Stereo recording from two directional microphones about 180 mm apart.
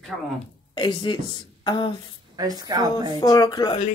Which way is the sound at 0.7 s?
25° left (ahead or behind).